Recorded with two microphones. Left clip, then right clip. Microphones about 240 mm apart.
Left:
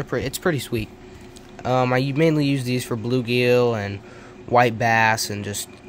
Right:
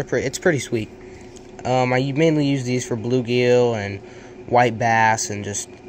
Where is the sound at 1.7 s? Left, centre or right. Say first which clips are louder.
Right 1 dB; left.